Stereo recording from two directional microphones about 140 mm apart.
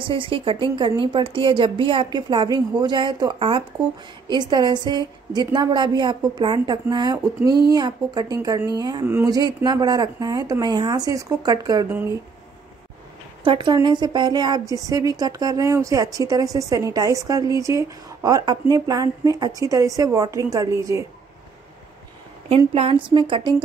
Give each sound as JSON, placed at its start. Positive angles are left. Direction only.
{"t": 0.0, "sound": "a woman's voice", "side_deg": -40}
{"t": 9.0, "sound": "speech", "side_deg": -15}
{"t": 9.3, "sound": "speech", "side_deg": -25}
{"t": 11.9, "sound": "speech", "side_deg": -15}
{"t": 13.4, "sound": "a woman's voice", "side_deg": -35}
{"t": 22.8, "sound": "a woman's voice", "side_deg": -45}